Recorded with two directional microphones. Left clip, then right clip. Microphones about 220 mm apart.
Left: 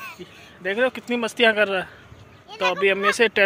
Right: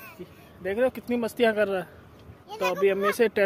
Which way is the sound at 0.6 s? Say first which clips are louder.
Left 3 dB; 10° left (ahead or behind).